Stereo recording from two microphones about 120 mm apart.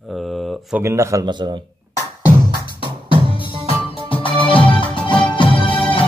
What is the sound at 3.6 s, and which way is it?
Music, 50° left (ahead or behind).